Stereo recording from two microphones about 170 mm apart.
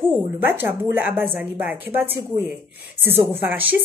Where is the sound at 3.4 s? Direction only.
10° right (ahead or behind).